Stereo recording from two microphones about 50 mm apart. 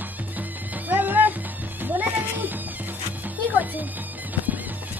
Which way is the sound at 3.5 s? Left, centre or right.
Right.